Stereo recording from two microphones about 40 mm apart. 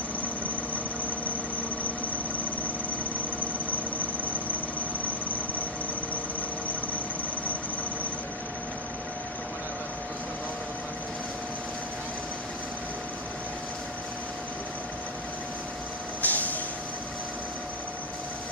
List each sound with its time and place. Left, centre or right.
3.7 s vehicle: left
16.2 s vehicle: left